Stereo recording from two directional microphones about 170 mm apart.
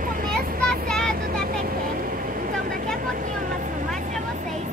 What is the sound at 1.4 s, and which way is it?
Vehicle, 60° right (ahead or behind).